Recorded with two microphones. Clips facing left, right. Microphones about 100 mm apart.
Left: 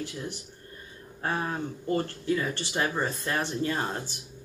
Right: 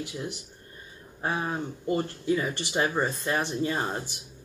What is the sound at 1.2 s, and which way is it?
Speech, 15° right (ahead or behind).